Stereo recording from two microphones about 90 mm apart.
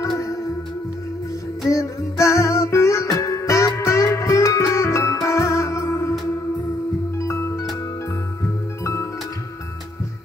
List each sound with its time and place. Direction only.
1.7 s music: 35° left (ahead or behind)
7.2 s music: 30° left (ahead or behind)